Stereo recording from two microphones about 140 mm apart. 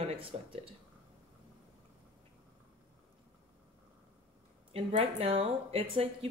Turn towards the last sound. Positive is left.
turn(degrees=-45)  # may be behind; listen again after turning